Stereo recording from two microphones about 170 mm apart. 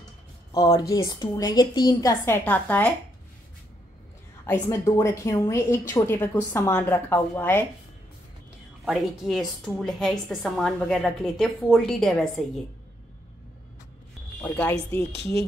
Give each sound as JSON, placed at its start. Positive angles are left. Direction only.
{"t": 0.5, "sound": "a woman's voice", "side_deg": 20}
{"t": 4.5, "sound": "a woman's voice", "side_deg": 15}
{"t": 8.8, "sound": "a woman's voice", "side_deg": 0}
{"t": 14.4, "sound": "a woman's voice", "side_deg": 10}